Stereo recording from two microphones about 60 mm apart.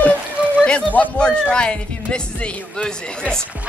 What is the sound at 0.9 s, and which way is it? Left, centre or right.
Speech, left.